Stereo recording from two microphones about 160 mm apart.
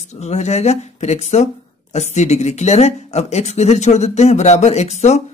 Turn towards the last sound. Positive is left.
turn(degrees=45)  # may be behind; listen again after turning